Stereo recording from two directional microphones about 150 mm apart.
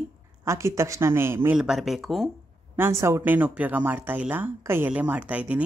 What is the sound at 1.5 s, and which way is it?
Speech, 5° right (ahead or behind).